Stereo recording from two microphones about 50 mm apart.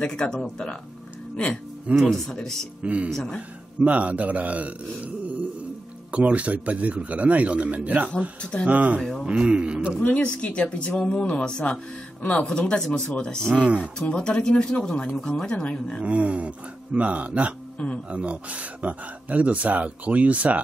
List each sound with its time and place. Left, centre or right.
0.0 s speech: centre
1.3 s music: left
1.9 s speech: right
6.1 s speech: right
9.2 s speech: centre
10.0 s speech: left
12.2 s speech: left
12.4 s speech: centre
13.6 s speech: right
14.1 s speech: centre
16.0 s speech: right